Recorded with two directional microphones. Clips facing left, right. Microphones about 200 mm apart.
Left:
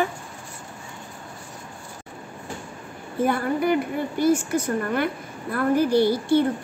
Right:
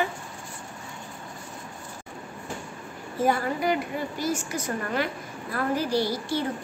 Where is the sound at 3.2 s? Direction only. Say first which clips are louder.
Left 3 dB; 55° left (ahead or behind).